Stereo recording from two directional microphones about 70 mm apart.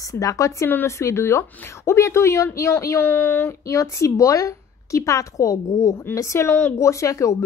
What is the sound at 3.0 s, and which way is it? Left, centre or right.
Speech, left.